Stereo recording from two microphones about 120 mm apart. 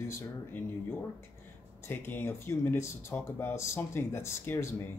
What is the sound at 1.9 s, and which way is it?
Speech, 20° left (ahead or behind).